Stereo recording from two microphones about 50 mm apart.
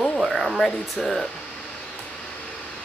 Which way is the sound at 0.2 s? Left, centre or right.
Centre.